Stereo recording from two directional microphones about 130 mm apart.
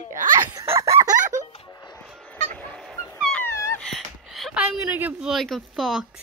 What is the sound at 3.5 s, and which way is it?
Wail, 20° left (ahead or behind).